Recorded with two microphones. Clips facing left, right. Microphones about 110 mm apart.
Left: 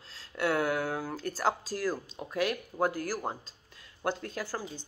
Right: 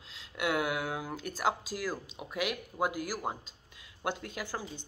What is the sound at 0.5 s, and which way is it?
Speech, 15° right (ahead or behind).